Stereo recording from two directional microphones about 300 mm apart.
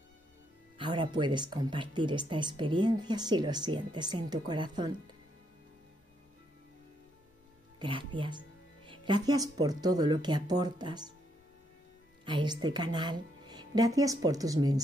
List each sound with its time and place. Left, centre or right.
0.7 s speech: centre
7.8 s speech: centre
12.3 s speech: centre